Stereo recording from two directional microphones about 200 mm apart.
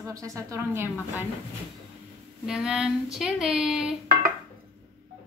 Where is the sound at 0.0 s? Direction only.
15° right (ahead or behind).